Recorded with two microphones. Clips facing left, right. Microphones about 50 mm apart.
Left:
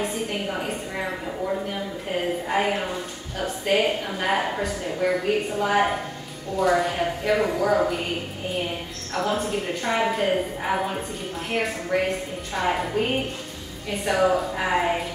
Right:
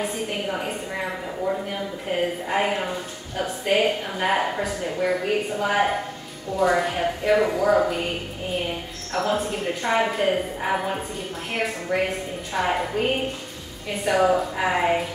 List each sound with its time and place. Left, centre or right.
0.0 s a sound: centre
2.4 s a woman's voice: centre
9.1 s a woman's voice: centre